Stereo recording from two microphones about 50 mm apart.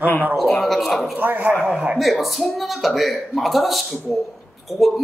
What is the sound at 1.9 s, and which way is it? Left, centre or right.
Speech, centre.